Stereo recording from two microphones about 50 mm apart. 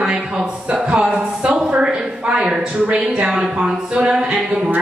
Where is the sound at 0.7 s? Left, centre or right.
Right.